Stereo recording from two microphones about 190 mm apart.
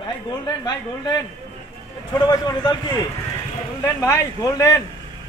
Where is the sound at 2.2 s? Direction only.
20° left (ahead or behind).